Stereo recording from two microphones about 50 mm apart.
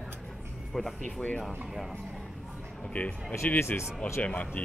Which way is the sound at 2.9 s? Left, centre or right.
Left.